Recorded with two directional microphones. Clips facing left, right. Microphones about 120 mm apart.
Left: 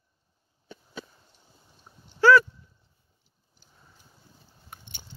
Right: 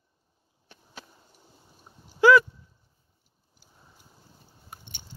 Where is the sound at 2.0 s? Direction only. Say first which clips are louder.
Even; 15° right (ahead or behind).